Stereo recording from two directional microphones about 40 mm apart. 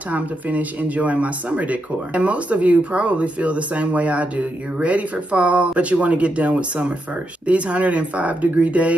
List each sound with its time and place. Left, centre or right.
0.1 s speech: right